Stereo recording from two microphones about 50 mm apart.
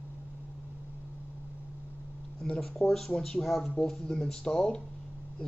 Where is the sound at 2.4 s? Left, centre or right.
Centre.